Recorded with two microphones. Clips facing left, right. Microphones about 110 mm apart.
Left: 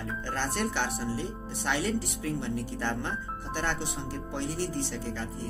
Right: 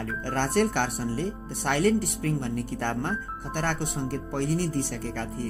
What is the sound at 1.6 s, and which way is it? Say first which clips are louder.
Speech: right 6 dB; 55° right (ahead or behind).